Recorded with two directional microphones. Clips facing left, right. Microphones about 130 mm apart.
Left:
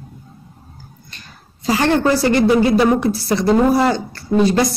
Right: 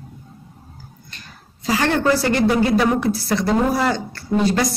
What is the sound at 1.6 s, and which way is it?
Speech, 30° left (ahead or behind).